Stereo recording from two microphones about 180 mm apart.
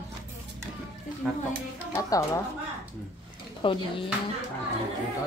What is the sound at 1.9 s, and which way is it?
Speech, 15° left (ahead or behind).